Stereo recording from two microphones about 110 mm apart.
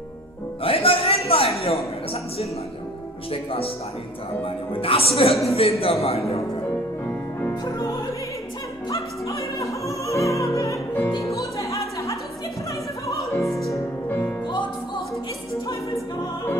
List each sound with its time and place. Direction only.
0.7 s a man's voice: 55° left (ahead or behind)
3.3 s a woman's voice: 60° left (ahead or behind)
4.7 s a woman's voice: 60° left (ahead or behind)
8.9 s opera: 30° left (ahead or behind)
11.1 s music: 30° left (ahead or behind)
13.3 s opera: 25° left (ahead or behind)
14.0 s music: 15° left (ahead or behind)